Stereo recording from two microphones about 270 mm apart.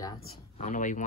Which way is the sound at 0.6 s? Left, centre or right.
Left.